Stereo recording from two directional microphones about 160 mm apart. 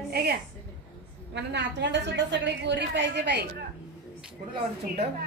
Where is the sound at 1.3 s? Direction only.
90° right.